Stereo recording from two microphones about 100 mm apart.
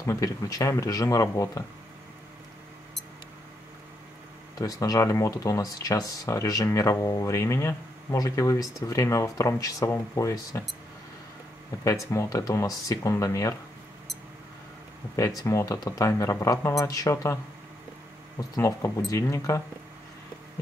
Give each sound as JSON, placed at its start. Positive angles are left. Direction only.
{"t": 0.0, "sound": "speech", "side_deg": 35}
{"t": 4.6, "sound": "speech", "side_deg": 35}
{"t": 11.8, "sound": "speech", "side_deg": 30}
{"t": 15.1, "sound": "speech", "side_deg": 35}
{"t": 18.6, "sound": "speech", "side_deg": 35}